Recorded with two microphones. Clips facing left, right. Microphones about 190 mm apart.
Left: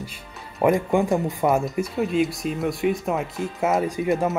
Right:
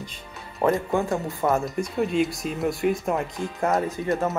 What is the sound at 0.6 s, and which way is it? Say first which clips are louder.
Speech: left 3 dB; 15° left (ahead or behind).